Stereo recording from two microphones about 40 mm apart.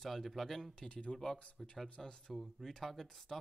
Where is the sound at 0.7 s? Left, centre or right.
Left.